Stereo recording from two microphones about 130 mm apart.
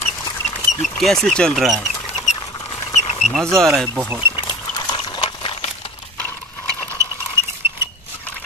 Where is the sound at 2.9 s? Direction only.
55° left (ahead or behind).